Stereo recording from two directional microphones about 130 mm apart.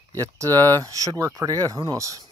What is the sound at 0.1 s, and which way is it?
Speech, 25° right (ahead or behind).